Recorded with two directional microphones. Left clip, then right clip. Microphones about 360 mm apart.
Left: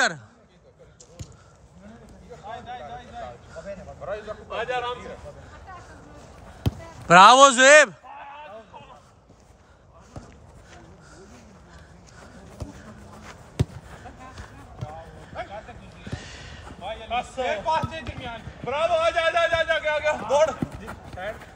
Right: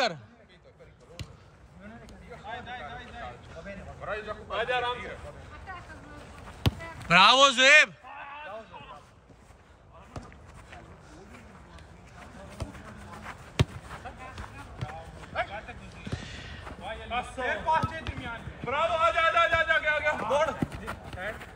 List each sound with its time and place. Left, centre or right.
2.4 s a sound: left
4.5 s a man's voice: left
5.7 s vehicle: centre
6.6 s speech: centre
8.1 s a sound: left
13.2 s basketball bounce: centre
14.3 s run: centre
15.3 s a sound: centre
16.1 s horse: centre
16.8 s a man's voice: centre
20.7 s clip-clop: centre